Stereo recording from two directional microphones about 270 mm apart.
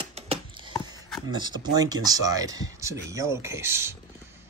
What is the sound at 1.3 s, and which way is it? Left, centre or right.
Speech, centre.